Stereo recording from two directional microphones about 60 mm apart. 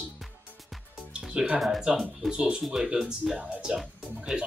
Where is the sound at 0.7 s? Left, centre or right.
Centre.